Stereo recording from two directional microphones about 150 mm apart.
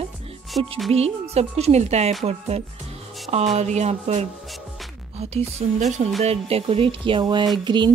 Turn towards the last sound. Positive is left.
turn(degrees=-30)  # may be behind; listen again after turning